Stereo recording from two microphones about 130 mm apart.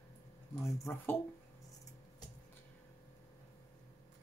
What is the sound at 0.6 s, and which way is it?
Speech, 20° left (ahead or behind).